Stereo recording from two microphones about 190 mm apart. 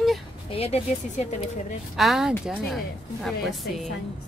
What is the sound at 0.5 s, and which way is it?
Speech, 30° left (ahead or behind).